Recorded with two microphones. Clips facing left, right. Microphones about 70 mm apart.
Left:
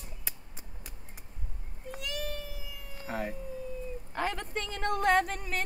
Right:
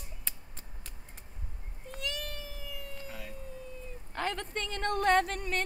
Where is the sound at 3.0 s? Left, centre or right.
Left.